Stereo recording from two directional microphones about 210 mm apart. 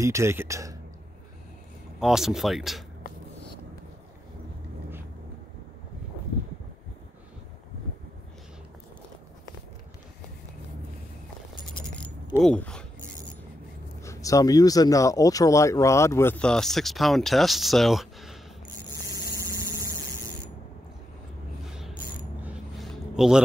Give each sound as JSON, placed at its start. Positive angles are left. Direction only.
{"t": 0.0, "sound": "speech", "side_deg": -15}
{"t": 2.0, "sound": "speech", "side_deg": 0}
{"t": 11.7, "sound": "keys jangling", "side_deg": 25}
{"t": 12.4, "sound": "speech", "side_deg": 5}
{"t": 14.0, "sound": "speech", "side_deg": 15}
{"t": 19.3, "sound": "vehicle", "side_deg": -15}
{"t": 21.6, "sound": "a sound", "side_deg": -5}